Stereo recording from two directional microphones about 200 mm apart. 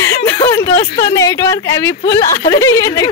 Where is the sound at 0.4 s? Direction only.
25° left (ahead or behind).